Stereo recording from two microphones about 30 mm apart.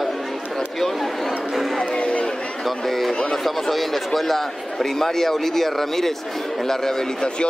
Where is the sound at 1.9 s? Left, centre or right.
Left.